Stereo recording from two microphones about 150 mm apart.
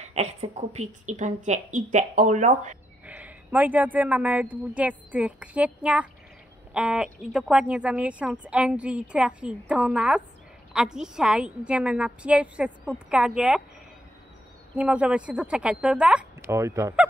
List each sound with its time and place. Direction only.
0.0 s a woman's voice: 45° right (ahead or behind)
3.1 s a woman's voice: 10° right (ahead or behind)
14.8 s a woman's voice: 10° right (ahead or behind)
16.5 s speech: 20° right (ahead or behind)